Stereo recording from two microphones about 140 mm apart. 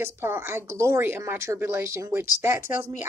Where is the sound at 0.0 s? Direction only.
15° right (ahead or behind).